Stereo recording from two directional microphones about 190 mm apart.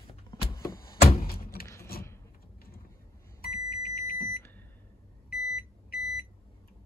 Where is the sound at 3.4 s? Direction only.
55° left (ahead or behind).